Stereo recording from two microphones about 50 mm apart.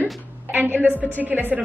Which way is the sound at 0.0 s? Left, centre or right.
Right.